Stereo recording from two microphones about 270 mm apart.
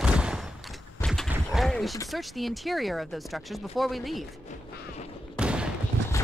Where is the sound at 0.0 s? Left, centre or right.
Centre.